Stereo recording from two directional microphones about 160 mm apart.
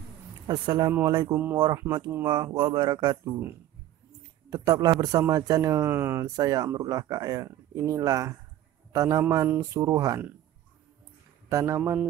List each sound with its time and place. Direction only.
0.5 s speech: 25° right (ahead or behind)
1.3 s speech: 10° right (ahead or behind)
2.2 s speech: 25° right (ahead or behind)
4.5 s a man's voice: 25° right (ahead or behind)
11.4 s speech: 20° right (ahead or behind)